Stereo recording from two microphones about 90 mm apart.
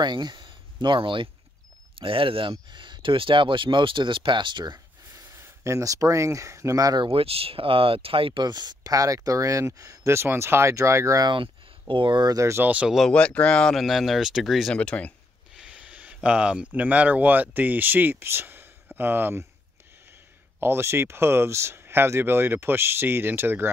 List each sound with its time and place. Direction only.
0.0 s speech: 55° right (ahead or behind)
2.0 s speech: 85° right
2.7 s speech: 60° right (ahead or behind)
5.1 s speech: 30° right (ahead or behind)
7.0 s speech: 90° right
8.5 s speech: 50° right (ahead or behind); by 11.2 s 35° right (ahead or behind)
11.2 s speech: 70° right (ahead or behind)
12.4 s speech: 30° right (ahead or behind)
12.6 s speech: 15° right (ahead or behind)
13.1 s speech: 15° left (ahead or behind)
14.8 s speech: 15° left (ahead or behind)
15.5 s speech: 10° right (ahead or behind)
20.6 s speech: 30° right (ahead or behind)